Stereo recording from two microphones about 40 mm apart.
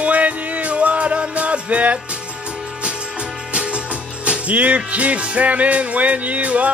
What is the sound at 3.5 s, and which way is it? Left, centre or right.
Music, right.